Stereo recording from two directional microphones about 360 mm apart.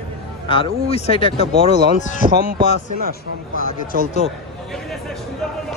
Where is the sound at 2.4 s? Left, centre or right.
Right.